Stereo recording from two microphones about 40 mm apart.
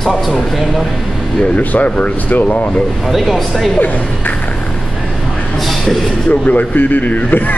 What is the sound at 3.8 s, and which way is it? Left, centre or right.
Speech, left.